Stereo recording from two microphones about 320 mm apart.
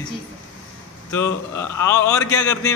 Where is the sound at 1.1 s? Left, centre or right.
Centre.